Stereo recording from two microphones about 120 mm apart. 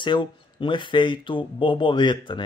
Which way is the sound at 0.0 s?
40° left (ahead or behind).